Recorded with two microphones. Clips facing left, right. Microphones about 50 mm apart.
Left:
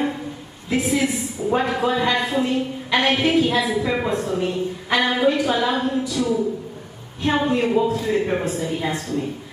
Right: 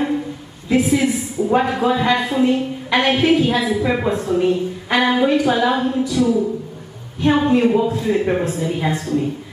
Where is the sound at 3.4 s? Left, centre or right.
Right.